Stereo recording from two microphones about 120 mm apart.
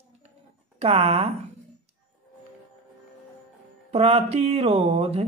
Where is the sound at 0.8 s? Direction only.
55° right (ahead or behind).